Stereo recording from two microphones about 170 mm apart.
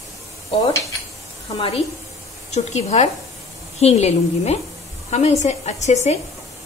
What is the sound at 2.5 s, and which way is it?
A woman's voice, 40° left (ahead or behind).